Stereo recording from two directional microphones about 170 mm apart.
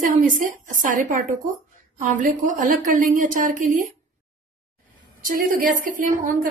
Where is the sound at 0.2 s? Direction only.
50° right (ahead or behind).